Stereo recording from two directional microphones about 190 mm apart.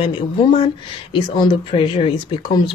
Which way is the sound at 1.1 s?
25° left (ahead or behind).